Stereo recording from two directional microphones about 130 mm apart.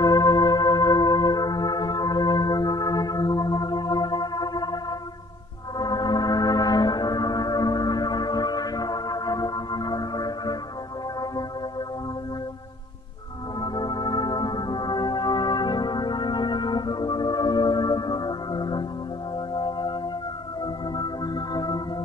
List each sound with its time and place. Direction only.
0.0 s organ: 30° left (ahead or behind)
5.8 s music: 30° left (ahead or behind)
13.6 s music: 35° left (ahead or behind)